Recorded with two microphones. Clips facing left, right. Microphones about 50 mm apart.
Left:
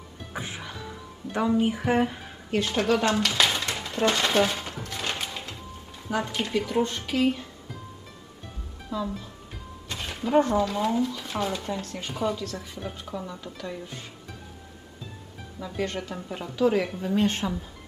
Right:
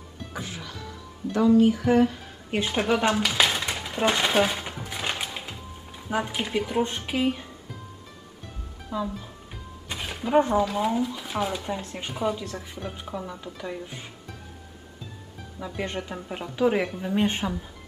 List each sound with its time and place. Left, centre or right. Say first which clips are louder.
0.3 s speech: left 1 dB; left
2.5 s a sound: even; centre
5.1 s music: right 1 dB; centre
6.0 s speech: even; centre
8.9 s speech: right 1 dB; right
9.8 s speech: even; centre
12.4 s speech: even; centre
15.6 s speech: left 1 dB; centre